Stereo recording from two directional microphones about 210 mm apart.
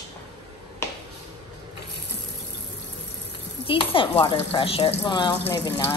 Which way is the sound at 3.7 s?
25° left (ahead or behind).